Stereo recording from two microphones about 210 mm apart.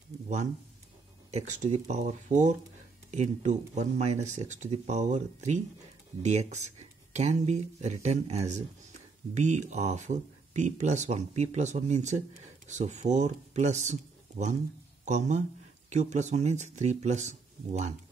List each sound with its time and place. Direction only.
1.3 s speech: 35° right (ahead or behind)